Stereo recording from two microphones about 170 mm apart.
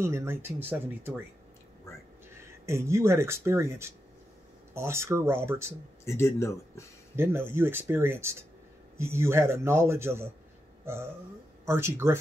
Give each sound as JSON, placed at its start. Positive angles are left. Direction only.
{"t": 0.0, "sound": "speech", "side_deg": -15}
{"t": 2.6, "sound": "speech", "side_deg": -15}
{"t": 6.0, "sound": "speech", "side_deg": 15}
{"t": 7.2, "sound": "speech", "side_deg": -15}
{"t": 10.9, "sound": "burping", "side_deg": -15}
{"t": 11.6, "sound": "speech", "side_deg": -15}